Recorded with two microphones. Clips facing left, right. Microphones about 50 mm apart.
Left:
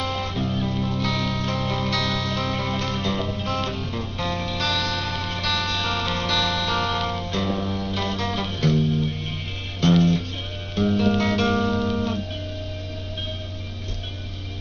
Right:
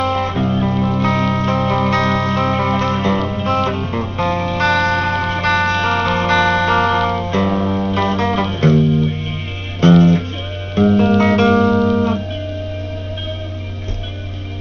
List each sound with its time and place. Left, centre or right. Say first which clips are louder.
0.0 s music: right 9 dB; right